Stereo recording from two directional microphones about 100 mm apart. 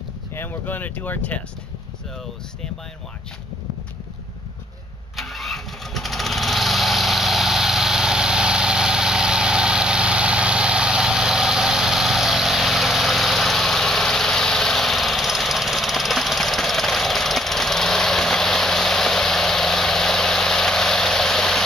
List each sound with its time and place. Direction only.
0.3 s speech: 20° left (ahead or behind)
5.1 s engine starting: centre (ahead or behind)